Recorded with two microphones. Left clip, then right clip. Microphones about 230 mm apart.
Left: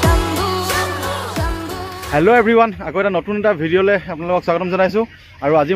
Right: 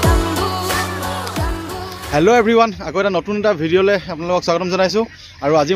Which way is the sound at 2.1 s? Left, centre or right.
Centre.